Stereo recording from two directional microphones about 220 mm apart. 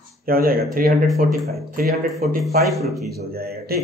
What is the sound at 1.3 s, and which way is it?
A man's voice, centre (ahead or behind).